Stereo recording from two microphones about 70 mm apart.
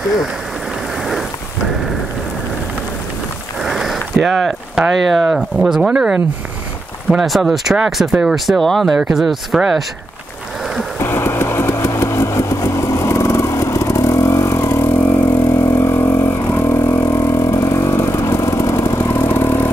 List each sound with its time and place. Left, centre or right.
0.9 s rain: centre
3.6 s a sound: centre
5.1 s speech: centre
7.1 s speech: centre
8.5 s speech: centre
8.9 s speech: centre
11.0 s vehicle: left